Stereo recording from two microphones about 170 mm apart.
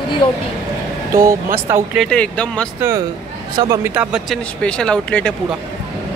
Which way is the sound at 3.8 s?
5° right (ahead or behind).